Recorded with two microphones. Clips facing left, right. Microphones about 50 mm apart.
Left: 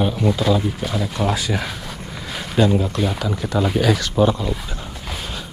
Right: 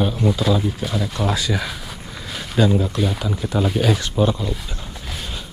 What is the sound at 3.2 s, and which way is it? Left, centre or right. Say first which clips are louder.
Speech: left 1 dB; left.